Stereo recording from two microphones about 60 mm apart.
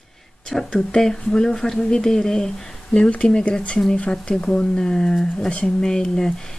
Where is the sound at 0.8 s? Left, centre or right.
Centre.